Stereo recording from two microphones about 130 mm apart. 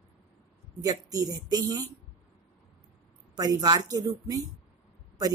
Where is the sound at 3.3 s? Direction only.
30° right (ahead or behind).